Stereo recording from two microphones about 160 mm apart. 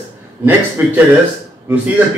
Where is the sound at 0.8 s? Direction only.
15° right (ahead or behind).